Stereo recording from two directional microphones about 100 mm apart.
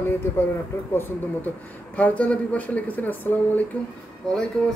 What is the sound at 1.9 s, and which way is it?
Speech, 15° left (ahead or behind).